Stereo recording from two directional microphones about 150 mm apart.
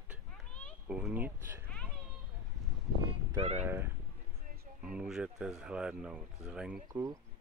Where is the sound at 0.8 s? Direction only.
10° right (ahead or behind).